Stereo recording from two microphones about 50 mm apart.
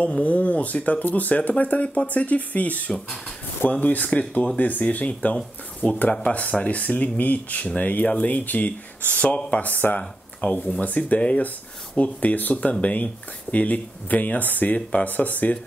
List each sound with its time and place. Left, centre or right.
0.2 s speech: left